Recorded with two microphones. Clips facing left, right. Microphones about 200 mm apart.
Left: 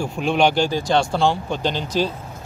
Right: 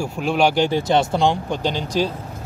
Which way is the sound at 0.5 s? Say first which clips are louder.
Right 1 dB; 20° right (ahead or behind).